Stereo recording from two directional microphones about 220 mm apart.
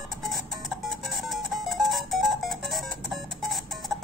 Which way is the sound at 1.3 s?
Centre (ahead or behind).